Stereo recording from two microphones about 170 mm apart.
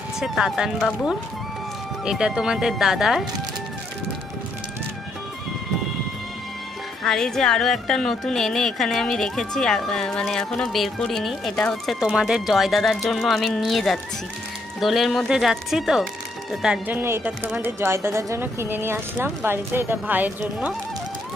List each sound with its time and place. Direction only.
0.2 s a woman's voice: centre (ahead or behind)
7.0 s a woman's voice: 5° left (ahead or behind)